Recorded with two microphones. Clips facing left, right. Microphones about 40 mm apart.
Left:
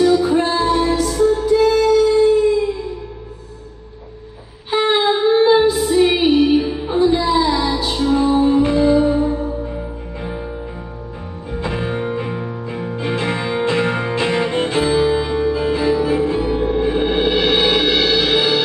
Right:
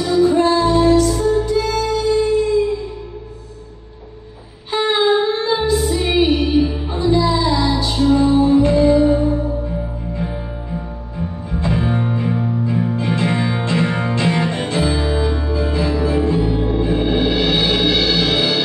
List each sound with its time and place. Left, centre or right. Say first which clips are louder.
0.1 s music: right 2 dB; centre
4.6 s music: even; centre